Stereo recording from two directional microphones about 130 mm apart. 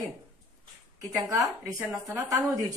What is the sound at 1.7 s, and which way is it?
Speech, 25° right (ahead or behind).